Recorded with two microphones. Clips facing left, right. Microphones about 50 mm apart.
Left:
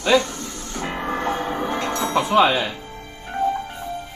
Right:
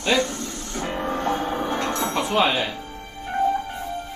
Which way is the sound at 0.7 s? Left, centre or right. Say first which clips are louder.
Left 1 dB; centre.